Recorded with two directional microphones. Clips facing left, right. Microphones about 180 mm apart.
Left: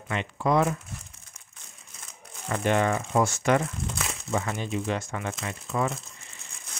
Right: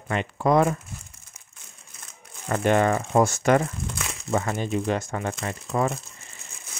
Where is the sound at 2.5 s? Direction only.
45° right (ahead or behind).